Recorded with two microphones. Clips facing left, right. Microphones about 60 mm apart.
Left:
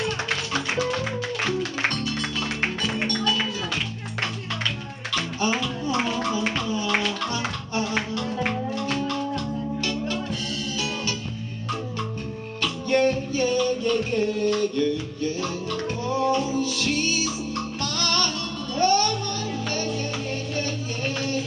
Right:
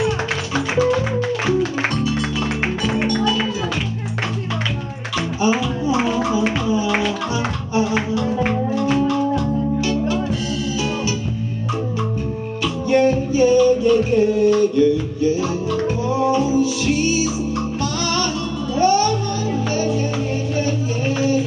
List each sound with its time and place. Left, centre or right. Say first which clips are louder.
0.7 s music: right 8 dB; centre
5.4 s music: right 7 dB; centre
12.6 s music: right 5 dB; centre
21.2 s music: right 11 dB; centre